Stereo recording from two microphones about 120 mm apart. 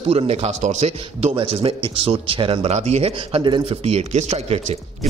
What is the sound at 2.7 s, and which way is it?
A man's voice, 65° right (ahead or behind).